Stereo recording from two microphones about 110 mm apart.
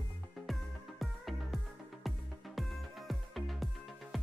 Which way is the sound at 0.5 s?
Centre (ahead or behind).